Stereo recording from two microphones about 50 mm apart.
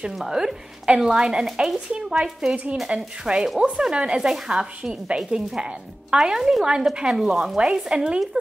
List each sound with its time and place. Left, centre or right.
0.1 s a woman's voice: centre
2.5 s a woman's voice: right